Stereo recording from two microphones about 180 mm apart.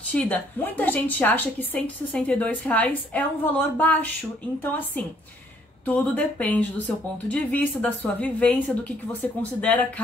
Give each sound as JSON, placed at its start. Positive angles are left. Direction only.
{"t": 0.1, "sound": "a woman's voice", "side_deg": 10}
{"t": 5.9, "sound": "a woman's voice", "side_deg": 10}